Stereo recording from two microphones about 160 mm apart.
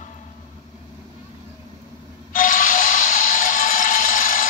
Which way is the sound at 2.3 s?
55° left (ahead or behind).